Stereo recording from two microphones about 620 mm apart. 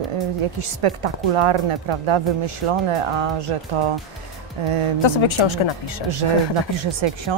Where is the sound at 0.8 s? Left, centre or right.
Right.